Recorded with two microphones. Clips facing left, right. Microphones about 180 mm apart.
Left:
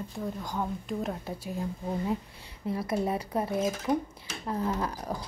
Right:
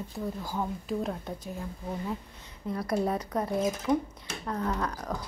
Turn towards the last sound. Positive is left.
turn(degrees=10)  # may be behind; listen again after turning